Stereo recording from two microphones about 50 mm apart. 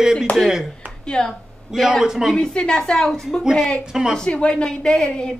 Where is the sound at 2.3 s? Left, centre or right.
Centre.